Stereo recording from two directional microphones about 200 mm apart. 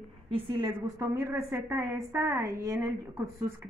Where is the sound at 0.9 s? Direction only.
15° right (ahead or behind).